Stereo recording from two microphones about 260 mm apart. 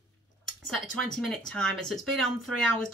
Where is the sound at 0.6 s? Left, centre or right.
Centre.